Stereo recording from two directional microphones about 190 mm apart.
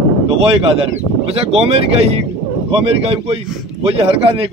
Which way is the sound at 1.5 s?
30° right (ahead or behind).